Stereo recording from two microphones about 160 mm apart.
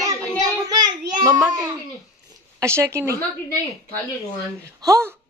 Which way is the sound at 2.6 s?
15° right (ahead or behind).